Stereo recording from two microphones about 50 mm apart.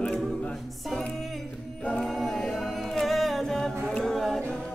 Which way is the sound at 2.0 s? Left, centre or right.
Centre.